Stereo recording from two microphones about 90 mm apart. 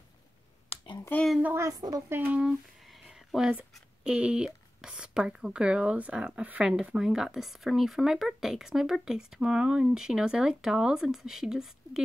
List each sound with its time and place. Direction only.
1.1 s a child's voice: 20° left (ahead or behind)
1.6 s a woman's voice: 40° right (ahead or behind)
2.0 s speech: 25° right (ahead or behind)
2.9 s a sound: 5° right (ahead or behind)
4.0 s speech: 10° right (ahead or behind)